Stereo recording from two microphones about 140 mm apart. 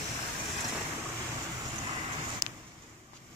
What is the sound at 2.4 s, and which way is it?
Vehicle, 25° right (ahead or behind).